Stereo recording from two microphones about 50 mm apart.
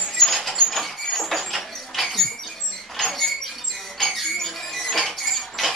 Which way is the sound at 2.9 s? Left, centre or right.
Centre.